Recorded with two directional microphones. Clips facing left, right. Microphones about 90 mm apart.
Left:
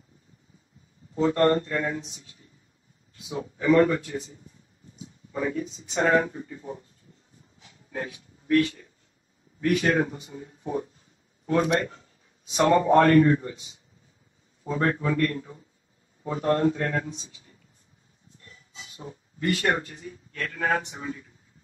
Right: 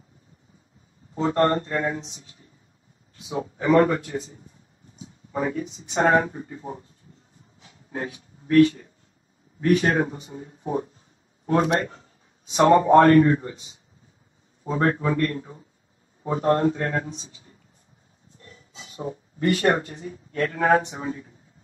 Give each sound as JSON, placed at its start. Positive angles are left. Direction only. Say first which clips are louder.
{"t": 1.1, "sound": "a man's voice", "louder": "even", "side_deg": -30}
{"t": 7.6, "sound": "a sound", "louder": "right 2 dB", "side_deg": -30}
{"t": 9.6, "sound": "a man's voice", "louder": "right 3 dB", "side_deg": -35}